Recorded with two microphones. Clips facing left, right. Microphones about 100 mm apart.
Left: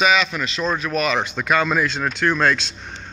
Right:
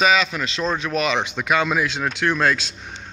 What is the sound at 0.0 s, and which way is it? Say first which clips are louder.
Speech: even; 30° right (ahead or behind).